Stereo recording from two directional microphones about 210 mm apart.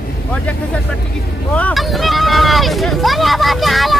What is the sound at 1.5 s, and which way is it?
Speech, 5° left (ahead or behind).